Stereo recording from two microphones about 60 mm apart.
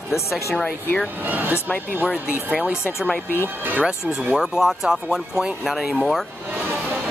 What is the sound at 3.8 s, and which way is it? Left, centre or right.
Speech, centre.